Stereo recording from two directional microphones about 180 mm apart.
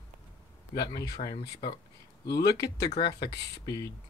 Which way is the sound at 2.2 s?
65° left (ahead or behind).